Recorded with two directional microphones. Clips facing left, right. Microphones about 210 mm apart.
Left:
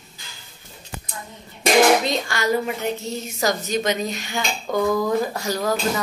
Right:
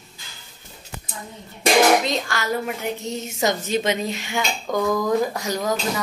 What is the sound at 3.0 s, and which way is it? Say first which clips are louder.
A woman's voice: right 4 dB; 25° right (ahead or behind).